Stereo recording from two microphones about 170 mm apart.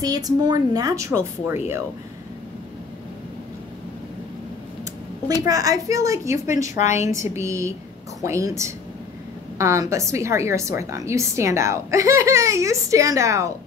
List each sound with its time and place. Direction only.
0.0 s a woman's voice: 20° right (ahead or behind)
5.4 s a woman's voice: 20° right (ahead or behind)
6.8 s a woman's voice: 45° left (ahead or behind)
7.3 s a woman's voice: 15° right (ahead or behind)